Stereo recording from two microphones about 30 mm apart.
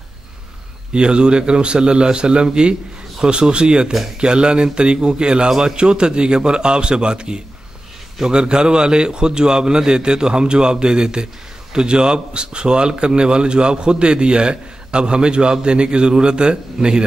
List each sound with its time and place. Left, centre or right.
0.9 s a man's voice: right